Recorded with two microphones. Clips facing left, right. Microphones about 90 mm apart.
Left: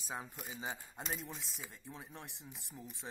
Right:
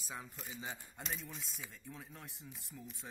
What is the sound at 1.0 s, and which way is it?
Speech, 5° left (ahead or behind).